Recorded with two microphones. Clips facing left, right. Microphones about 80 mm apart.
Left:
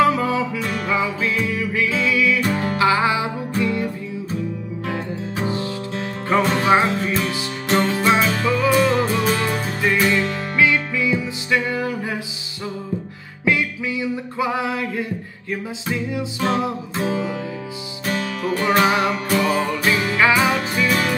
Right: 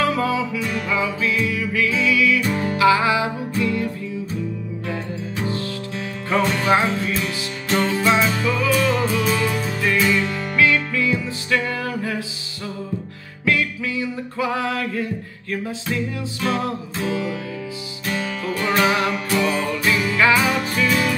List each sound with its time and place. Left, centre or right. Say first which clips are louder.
0.0 s music: left 3 dB; left
1.4 s music: even; left
5.4 s music: left 2 dB; left
9.8 s music: left 1 dB; centre
13.5 s music: left 1 dB; centre
16.3 s music: left 1 dB; left
18.0 s music: left 2 dB; left
18.8 s music: even; left